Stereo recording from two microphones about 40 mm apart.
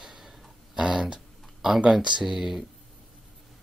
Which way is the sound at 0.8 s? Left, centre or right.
Right.